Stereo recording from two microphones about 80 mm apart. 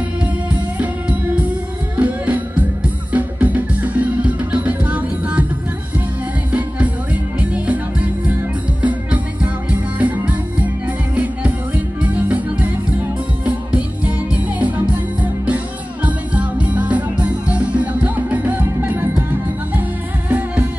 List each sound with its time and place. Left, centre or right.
0.7 s music: centre
7.3 s music: centre
20.2 s music: centre